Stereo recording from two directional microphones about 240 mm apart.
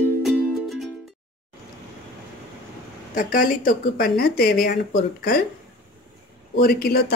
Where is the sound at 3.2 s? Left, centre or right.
Left.